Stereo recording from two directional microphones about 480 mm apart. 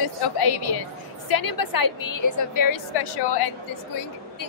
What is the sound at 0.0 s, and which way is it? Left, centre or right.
A woman's voice, left.